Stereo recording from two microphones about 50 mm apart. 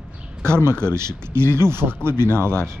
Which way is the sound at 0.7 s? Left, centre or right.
Right.